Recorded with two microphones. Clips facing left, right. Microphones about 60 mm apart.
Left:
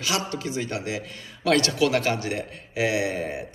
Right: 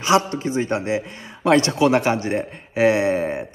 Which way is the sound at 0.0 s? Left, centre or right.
Right.